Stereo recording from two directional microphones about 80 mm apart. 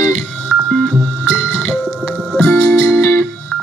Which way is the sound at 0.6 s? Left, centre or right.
Centre.